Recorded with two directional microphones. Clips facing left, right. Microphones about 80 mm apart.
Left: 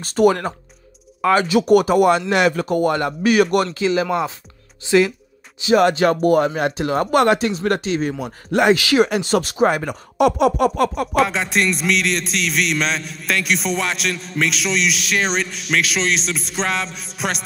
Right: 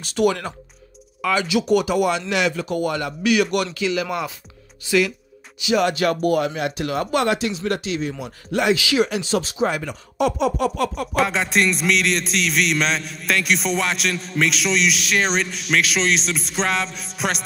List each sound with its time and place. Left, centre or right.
0.0 s speech: left
7.1 s speech: left
11.1 s music: centre